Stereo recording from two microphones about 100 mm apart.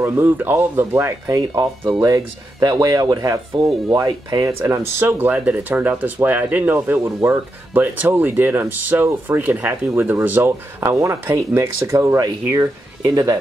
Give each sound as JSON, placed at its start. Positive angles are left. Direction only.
{"t": 0.0, "sound": "speech", "side_deg": -20}
{"t": 1.2, "sound": "speech", "side_deg": -35}